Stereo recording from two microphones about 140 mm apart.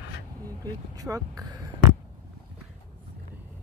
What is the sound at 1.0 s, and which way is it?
Speech, 25° right (ahead or behind).